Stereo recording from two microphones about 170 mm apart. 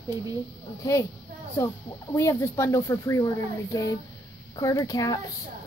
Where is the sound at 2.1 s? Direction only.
15° left (ahead or behind).